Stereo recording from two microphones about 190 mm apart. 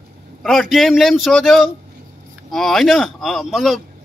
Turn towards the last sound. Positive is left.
turn(degrees=0)  # may be behind; listen again after turning